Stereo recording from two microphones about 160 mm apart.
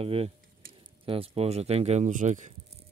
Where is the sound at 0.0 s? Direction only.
40° right (ahead or behind).